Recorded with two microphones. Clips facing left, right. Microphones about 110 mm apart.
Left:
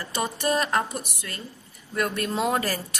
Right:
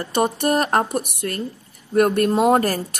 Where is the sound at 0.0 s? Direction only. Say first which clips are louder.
Right 7 dB; 55° right (ahead or behind).